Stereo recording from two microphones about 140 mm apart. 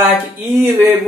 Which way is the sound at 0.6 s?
15° right (ahead or behind).